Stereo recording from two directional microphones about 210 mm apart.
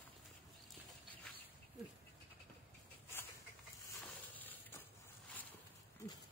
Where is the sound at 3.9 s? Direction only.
10° left (ahead or behind).